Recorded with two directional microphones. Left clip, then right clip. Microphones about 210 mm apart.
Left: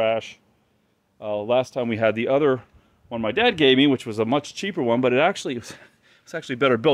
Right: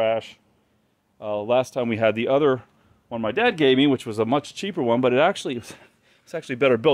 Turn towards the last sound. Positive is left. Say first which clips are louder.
# even
turn(degrees=5)  # may be behind; listen again after turning